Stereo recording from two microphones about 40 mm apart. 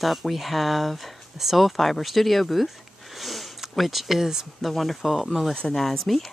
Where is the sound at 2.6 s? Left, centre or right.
Centre.